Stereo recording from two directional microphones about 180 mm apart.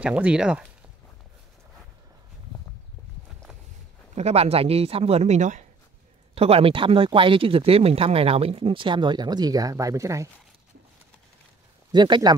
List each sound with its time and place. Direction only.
0.0 s speech: 5° right (ahead or behind)
4.1 s speech: 35° right (ahead or behind); by 10.3 s 15° right (ahead or behind)
11.9 s speech: 25° right (ahead or behind)